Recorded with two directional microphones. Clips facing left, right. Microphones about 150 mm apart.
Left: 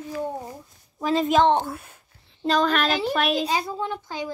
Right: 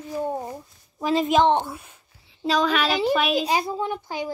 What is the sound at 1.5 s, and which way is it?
A woman's voice, centre (ahead or behind).